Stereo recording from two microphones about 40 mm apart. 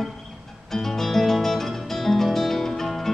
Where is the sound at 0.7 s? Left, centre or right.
Centre.